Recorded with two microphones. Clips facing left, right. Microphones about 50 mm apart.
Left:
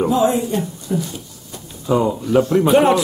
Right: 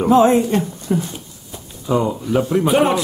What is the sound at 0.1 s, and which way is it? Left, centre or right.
Speech, right.